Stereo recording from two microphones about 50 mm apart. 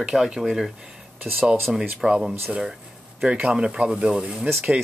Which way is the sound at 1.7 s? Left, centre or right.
Centre.